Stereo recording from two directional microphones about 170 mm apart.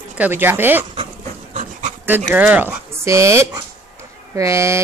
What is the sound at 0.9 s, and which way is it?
Dog, 40° right (ahead or behind).